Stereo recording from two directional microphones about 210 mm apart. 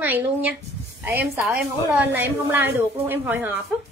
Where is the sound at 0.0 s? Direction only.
5° right (ahead or behind).